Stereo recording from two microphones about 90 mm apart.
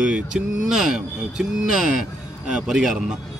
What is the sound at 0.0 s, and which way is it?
Speech, 10° right (ahead or behind).